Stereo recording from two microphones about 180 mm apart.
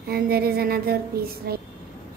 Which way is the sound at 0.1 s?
60° right (ahead or behind).